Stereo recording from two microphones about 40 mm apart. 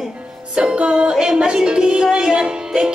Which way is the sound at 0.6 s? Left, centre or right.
Right.